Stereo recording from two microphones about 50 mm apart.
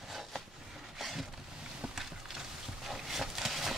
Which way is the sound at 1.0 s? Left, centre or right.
Centre.